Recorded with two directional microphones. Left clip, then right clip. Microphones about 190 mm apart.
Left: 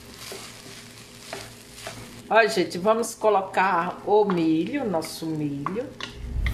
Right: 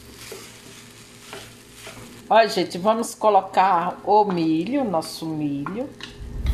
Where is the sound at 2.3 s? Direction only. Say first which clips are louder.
Right 3 dB; 25° right (ahead or behind).